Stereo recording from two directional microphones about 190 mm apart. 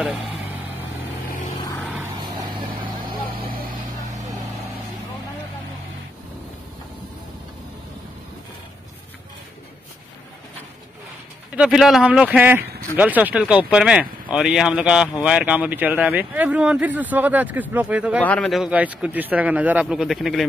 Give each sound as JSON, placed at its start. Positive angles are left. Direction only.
{"t": 2.1, "sound": "vehicle", "side_deg": -25}
{"t": 11.5, "sound": "speech", "side_deg": -5}
{"t": 18.2, "sound": "speech", "side_deg": 5}